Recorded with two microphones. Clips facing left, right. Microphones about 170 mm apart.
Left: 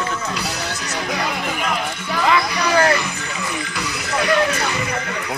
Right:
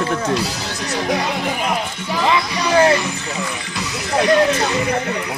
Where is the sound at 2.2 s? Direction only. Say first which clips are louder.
Even; 20° right (ahead or behind).